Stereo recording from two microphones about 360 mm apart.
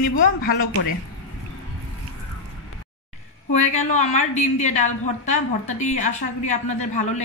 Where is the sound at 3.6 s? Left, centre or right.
Centre.